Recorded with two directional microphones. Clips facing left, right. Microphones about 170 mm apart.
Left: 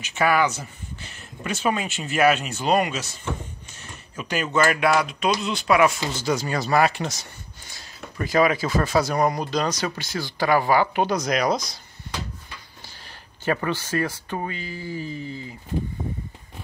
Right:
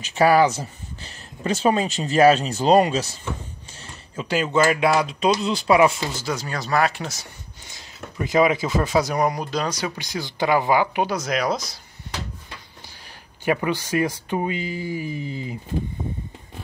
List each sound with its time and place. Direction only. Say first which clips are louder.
0.0 s speech: right 5 dB; 35° right (ahead or behind)
4.2 s speech: right 2 dB; 25° right (ahead or behind)
6.2 s speech: left 8 dB; centre (ahead or behind)
7.7 s speech: right 2 dB; 20° right (ahead or behind); by 11.7 s 5° right (ahead or behind)
13.5 s speech: right 2 dB; 15° right (ahead or behind)